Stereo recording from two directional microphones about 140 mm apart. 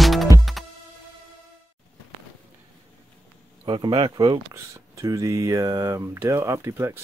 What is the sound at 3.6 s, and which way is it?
Speech, 35° right (ahead or behind).